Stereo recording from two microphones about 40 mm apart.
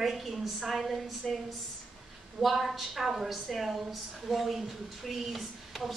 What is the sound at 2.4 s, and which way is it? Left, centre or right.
A woman's voice, centre.